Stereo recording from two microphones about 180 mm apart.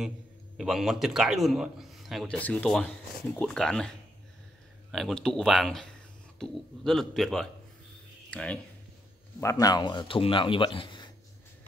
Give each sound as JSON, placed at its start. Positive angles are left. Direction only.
{"t": 0.6, "sound": "a man's voice", "side_deg": 0}
{"t": 4.9, "sound": "a man's voice", "side_deg": 0}
{"t": 9.4, "sound": "a man's voice", "side_deg": 15}